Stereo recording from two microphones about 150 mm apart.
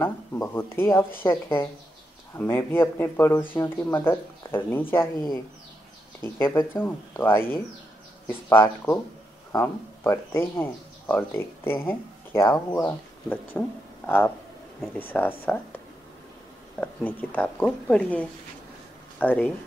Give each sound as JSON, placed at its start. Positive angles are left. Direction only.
{"t": 0.0, "sound": "speech", "side_deg": 15}
{"t": 6.2, "sound": "speech", "side_deg": 15}
{"t": 16.8, "sound": "speech", "side_deg": 10}